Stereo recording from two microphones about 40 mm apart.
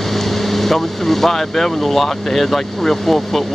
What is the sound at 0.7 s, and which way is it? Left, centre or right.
Speech, centre.